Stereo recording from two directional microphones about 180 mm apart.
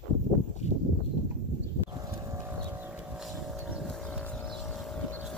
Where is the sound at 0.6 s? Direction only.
40° left (ahead or behind).